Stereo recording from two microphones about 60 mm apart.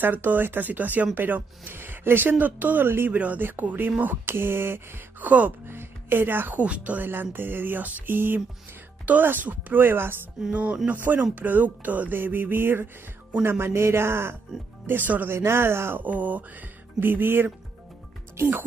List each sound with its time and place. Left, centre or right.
0.0 s speech: right
3.1 s speech: right
6.6 s speech: right
7.1 s speech: right
10.5 s speech: right
14.9 s speech: right
15.3 s speech: right
16.0 s speech: right